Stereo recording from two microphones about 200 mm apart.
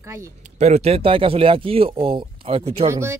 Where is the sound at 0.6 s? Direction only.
30° right (ahead or behind).